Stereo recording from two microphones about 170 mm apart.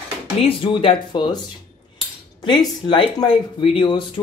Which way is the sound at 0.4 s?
30° left (ahead or behind).